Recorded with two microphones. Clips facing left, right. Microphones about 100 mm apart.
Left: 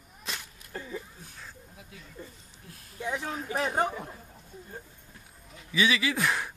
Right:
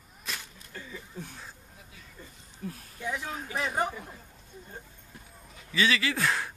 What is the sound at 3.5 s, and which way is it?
Chatter, 30° left (ahead or behind).